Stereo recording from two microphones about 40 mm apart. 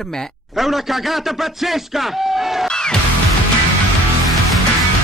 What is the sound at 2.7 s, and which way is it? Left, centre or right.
Music, centre.